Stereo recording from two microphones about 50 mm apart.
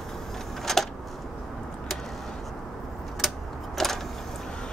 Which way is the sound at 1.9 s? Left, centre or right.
Centre.